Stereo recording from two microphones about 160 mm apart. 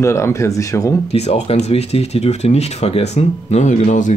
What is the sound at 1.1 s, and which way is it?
Speech, 40° left (ahead or behind).